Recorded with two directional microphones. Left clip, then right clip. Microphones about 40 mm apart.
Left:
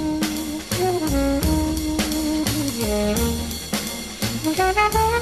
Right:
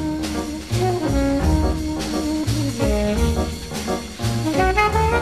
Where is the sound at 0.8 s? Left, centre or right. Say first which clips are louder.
Right 1 dB; right.